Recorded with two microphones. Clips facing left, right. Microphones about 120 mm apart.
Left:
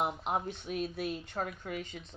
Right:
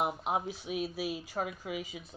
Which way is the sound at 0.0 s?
5° right (ahead or behind).